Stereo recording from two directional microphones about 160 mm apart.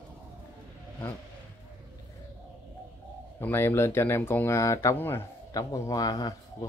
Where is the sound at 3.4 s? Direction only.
15° left (ahead or behind).